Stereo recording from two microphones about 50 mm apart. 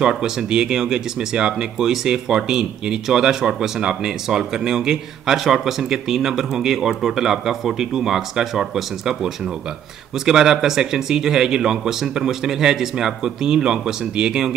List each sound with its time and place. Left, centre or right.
0.0 s speech: centre